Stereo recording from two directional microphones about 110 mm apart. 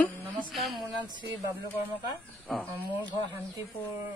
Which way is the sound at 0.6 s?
Centre (ahead or behind).